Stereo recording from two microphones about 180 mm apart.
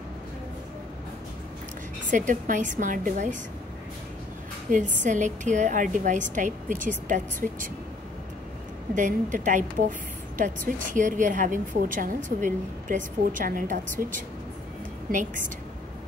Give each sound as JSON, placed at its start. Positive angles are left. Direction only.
{"t": 2.0, "sound": "a woman's voice", "side_deg": -45}
{"t": 4.6, "sound": "a woman's voice", "side_deg": -45}
{"t": 8.9, "sound": "a woman's voice", "side_deg": -45}